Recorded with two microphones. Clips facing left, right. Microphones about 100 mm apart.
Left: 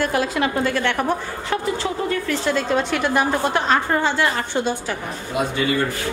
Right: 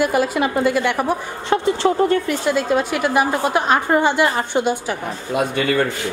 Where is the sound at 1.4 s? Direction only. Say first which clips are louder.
Right 7 dB; 25° right (ahead or behind).